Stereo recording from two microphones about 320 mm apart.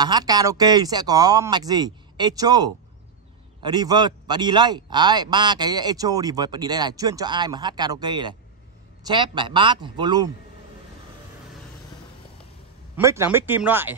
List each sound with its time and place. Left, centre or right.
0.0 s a man's voice: centre
12.9 s a man's voice: centre